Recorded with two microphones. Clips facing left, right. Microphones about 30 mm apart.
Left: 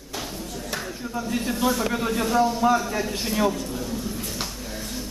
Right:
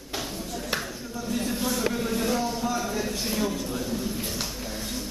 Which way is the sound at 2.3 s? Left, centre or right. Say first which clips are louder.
Left 6 dB; centre.